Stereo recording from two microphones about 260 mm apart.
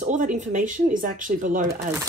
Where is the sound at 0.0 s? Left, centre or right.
Right.